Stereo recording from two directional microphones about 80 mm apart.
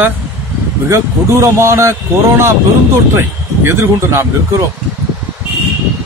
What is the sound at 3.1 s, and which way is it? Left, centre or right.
Speech, right.